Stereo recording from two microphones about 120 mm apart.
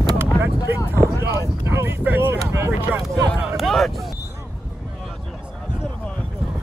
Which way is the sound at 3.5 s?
Centre (ahead or behind).